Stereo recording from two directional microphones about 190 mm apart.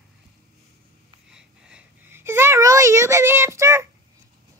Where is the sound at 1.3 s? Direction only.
5° right (ahead or behind).